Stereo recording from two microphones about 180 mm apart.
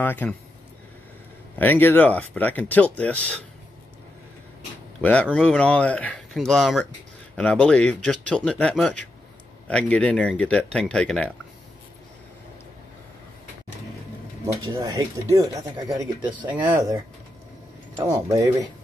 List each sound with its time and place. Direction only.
0.0 s speech: 10° left (ahead or behind)
1.6 s speech: 10° left (ahead or behind)
5.0 s speech: 5° left (ahead or behind)
14.4 s speech: 20° right (ahead or behind)